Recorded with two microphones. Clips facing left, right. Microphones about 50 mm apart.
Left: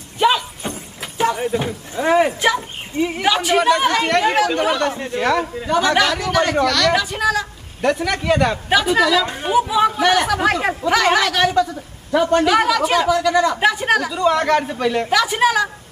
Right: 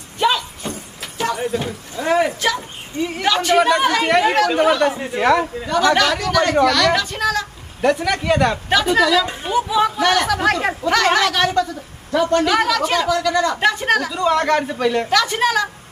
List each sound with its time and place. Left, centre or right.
0.7 s a man's voice: left; by 5.7 s centre
5.7 s speech: centre
6.6 s a man's voice: centre
7.0 s a man's voice: centre